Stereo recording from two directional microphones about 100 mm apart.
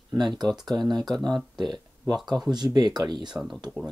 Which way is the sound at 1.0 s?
5° left (ahead or behind).